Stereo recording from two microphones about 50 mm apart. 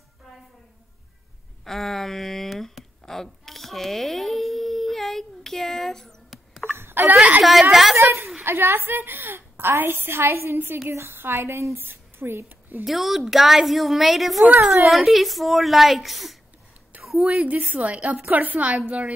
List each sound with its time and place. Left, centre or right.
1.6 s speech: centre
3.1 s a sound: centre
6.6 s wail: right
7.2 s a woman's voice: right
7.7 s a sound: centre
8.0 s a sound: right
8.5 s a woman's voice: right
11.9 s speech: right
12.8 s a woman's voice: centre
17.2 s a woman's voice: centre
17.5 s a woman's voice: right